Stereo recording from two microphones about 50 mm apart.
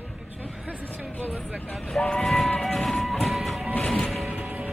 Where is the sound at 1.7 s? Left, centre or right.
Centre.